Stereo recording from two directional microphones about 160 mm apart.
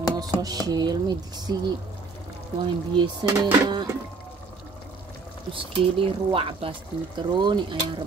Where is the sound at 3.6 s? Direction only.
25° right (ahead or behind).